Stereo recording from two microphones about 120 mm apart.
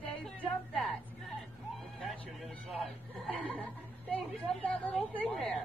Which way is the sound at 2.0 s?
Centre (ahead or behind).